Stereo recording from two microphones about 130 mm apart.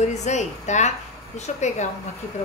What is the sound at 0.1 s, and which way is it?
A woman's voice, 65° left (ahead or behind).